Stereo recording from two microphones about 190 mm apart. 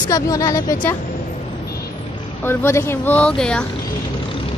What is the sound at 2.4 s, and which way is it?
Speech, 10° left (ahead or behind).